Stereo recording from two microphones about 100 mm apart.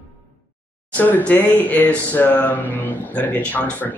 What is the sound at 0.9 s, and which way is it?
Speech, 15° left (ahead or behind).